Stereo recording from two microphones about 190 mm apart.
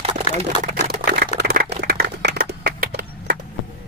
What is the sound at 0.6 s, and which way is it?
Speech, 50° right (ahead or behind).